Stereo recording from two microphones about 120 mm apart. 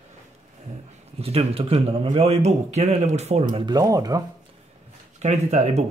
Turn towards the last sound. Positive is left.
turn(degrees=-65)  # may be behind; listen again after turning